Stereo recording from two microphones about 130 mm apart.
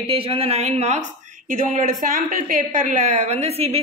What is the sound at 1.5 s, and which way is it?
Speech, 85° right.